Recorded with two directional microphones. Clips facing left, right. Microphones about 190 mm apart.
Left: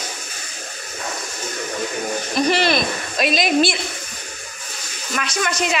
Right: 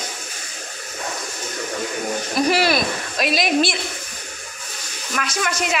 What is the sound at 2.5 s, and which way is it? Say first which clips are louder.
Speech: even; 5° right (ahead or behind).